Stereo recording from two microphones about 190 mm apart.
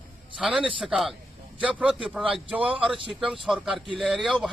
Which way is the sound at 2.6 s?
30° right (ahead or behind).